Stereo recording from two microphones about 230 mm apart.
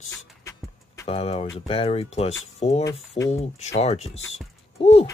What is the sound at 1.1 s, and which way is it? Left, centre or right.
Speech, left.